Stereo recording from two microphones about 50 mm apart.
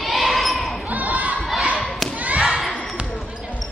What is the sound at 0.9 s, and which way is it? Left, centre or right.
Crowd, right.